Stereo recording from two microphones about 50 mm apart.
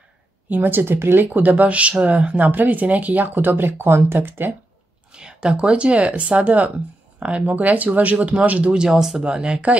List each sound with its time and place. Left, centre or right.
0.5 s speech: right
5.1 s speech: centre
8.9 s speech: centre
9.2 s speech: centre